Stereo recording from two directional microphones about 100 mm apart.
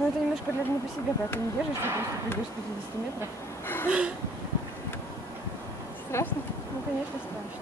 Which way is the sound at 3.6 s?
25° left (ahead or behind).